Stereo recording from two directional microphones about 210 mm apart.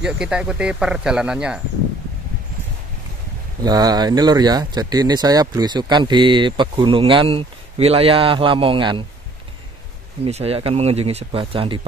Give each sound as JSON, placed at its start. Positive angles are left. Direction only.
{"t": 0.0, "sound": "speech", "side_deg": -5}
{"t": 3.6, "sound": "speech", "side_deg": -20}
{"t": 10.2, "sound": "speech", "side_deg": -30}